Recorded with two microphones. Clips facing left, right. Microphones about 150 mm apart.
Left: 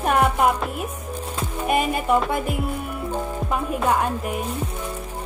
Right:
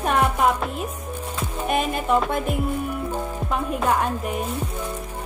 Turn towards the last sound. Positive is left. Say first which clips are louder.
# even
turn(degrees=0)  # may be behind; listen again after turning